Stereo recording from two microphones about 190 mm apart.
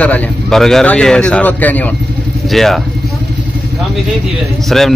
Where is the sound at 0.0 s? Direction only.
5° left (ahead or behind).